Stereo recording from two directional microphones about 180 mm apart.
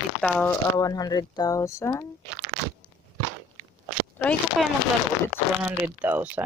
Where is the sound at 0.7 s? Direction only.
20° left (ahead or behind).